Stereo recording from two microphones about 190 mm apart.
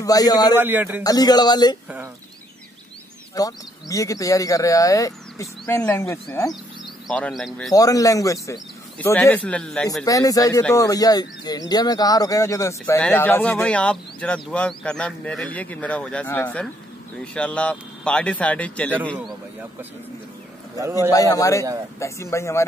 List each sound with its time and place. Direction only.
0.0 s speech: 20° left (ahead or behind)
0.6 s a man's voice: 10° right (ahead or behind)
1.0 s speech: 20° left (ahead or behind)
3.3 s speech: 20° left (ahead or behind); by 7.7 s centre (ahead or behind)
7.7 s speech: 20° left (ahead or behind)
10.0 s speech: 20° left (ahead or behind)
21.1 s speech: 20° left (ahead or behind)